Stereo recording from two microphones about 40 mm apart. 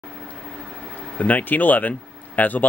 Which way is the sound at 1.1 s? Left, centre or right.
Left.